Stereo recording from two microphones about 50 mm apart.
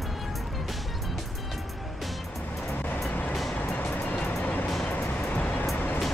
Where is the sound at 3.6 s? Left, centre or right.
Left.